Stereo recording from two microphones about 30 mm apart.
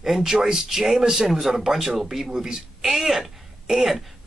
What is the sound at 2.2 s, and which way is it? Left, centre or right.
A man's voice, right.